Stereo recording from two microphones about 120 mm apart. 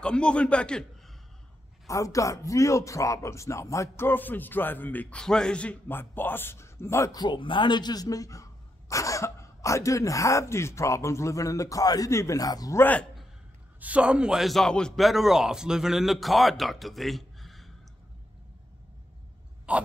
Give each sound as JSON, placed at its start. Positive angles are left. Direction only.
{"t": 0.0, "sound": "a man's voice", "side_deg": 10}
{"t": 1.9, "sound": "speech", "side_deg": 25}
{"t": 12.7, "sound": "a man's voice", "side_deg": 15}
{"t": 13.7, "sound": "a man's voice", "side_deg": -10}
{"t": 19.7, "sound": "a sound", "side_deg": -10}